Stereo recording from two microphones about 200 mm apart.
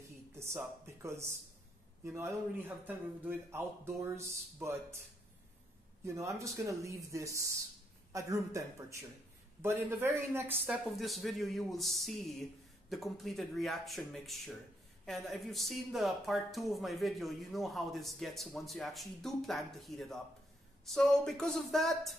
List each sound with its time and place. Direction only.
0.3 s speech: 15° right (ahead or behind)
6.0 s speech: 15° right (ahead or behind); by 22.1 s centre (ahead or behind)